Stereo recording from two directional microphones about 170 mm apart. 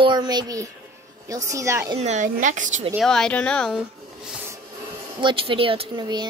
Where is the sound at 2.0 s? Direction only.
45° right (ahead or behind).